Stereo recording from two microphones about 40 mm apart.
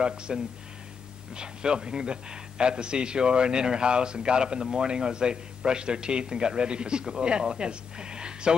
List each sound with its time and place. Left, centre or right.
0.0 s a man's voice: right